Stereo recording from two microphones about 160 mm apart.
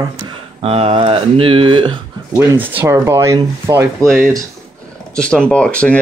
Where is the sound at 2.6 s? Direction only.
10° right (ahead or behind).